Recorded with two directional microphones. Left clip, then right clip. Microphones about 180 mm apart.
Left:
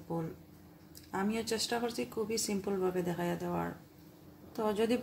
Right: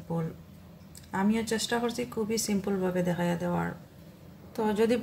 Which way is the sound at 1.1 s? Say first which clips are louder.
Right 5 dB; 10° left (ahead or behind).